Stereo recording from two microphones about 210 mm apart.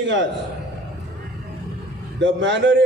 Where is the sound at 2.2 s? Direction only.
60° right (ahead or behind).